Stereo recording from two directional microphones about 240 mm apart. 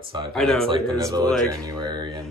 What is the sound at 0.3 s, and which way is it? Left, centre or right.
Speech, centre.